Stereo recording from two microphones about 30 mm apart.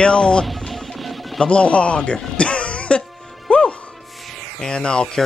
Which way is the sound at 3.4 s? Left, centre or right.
Left.